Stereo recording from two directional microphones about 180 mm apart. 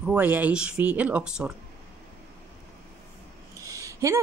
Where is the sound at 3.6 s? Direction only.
20° right (ahead or behind).